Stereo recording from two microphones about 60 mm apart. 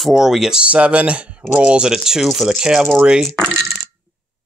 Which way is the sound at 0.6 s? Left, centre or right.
Right.